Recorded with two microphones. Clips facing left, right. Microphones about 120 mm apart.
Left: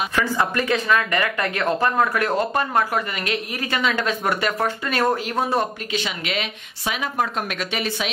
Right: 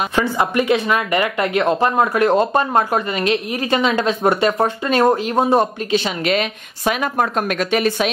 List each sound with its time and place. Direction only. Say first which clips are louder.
0.1 s speech: right 4 dB; 25° right (ahead or behind); by 8.1 s 45° right (ahead or behind)